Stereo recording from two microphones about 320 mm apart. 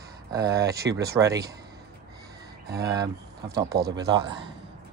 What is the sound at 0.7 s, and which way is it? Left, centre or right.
Speech, right.